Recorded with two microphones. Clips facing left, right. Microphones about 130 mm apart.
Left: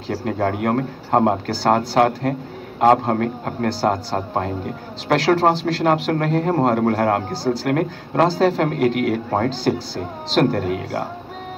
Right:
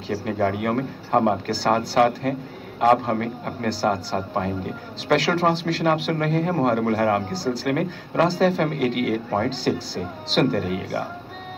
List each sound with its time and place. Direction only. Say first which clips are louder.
0.1 s a man's voice: left 1 dB; 45° left (ahead or behind)